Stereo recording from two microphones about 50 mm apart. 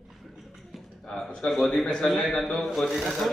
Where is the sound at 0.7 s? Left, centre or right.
Centre.